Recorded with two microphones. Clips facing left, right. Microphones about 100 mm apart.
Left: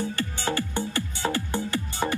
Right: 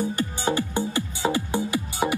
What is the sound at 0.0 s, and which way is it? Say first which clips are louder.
Music: right 3 dB; 15° right (ahead or behind).